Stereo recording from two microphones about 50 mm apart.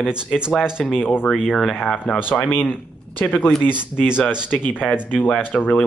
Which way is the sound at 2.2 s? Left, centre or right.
Left.